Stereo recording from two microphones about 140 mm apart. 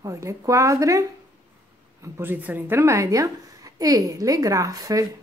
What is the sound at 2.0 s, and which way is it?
A woman's voice, 15° right (ahead or behind).